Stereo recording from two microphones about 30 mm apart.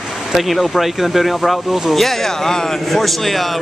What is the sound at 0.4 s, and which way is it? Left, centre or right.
Speech, centre.